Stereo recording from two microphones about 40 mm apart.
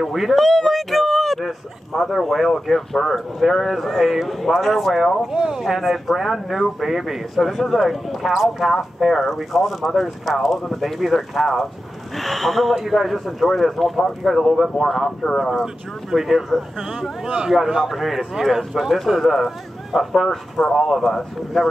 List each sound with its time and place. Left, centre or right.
0.1 s a sound: centre
2.0 s speech: centre
5.3 s speech: centre
5.6 s speech: centre
14.8 s speech: centre
15.6 s speech: centre
17.6 s speech: centre
17.9 s speech: centre
20.5 s speech: centre